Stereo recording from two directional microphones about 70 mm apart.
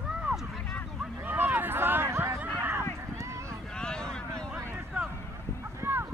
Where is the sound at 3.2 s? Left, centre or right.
Right.